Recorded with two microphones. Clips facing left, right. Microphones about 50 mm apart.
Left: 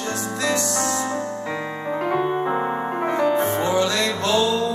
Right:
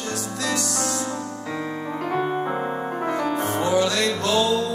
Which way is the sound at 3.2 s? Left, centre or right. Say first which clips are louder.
Left 5 dB; left.